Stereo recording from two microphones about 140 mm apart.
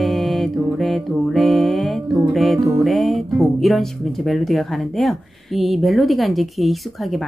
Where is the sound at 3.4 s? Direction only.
Centre (ahead or behind).